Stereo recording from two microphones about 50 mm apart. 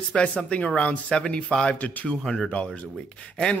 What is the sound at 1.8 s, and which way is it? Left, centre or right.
Speech, left.